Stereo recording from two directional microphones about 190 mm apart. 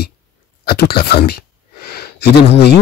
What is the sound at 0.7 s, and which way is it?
Speech, 55° left (ahead or behind).